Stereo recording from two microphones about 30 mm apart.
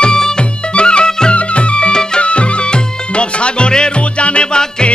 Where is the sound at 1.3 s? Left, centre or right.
Left.